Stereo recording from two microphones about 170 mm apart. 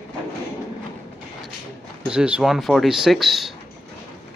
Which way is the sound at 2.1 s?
5° right (ahead or behind).